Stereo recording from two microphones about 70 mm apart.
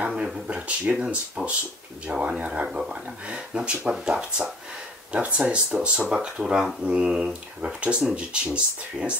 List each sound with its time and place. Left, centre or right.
0.1 s speech: centre